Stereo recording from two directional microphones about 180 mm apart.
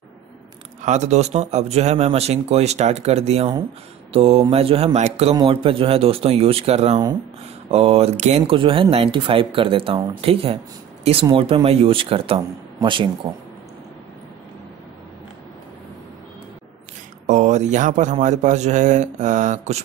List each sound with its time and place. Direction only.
0.8 s a man's voice: 40° right (ahead or behind)
17.3 s a man's voice: 40° right (ahead or behind)